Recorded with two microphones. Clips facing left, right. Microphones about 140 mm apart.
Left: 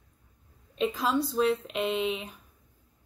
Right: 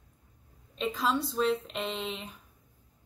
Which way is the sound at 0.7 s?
5° left (ahead or behind).